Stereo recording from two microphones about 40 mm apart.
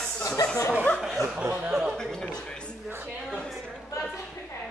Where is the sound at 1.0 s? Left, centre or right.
Centre.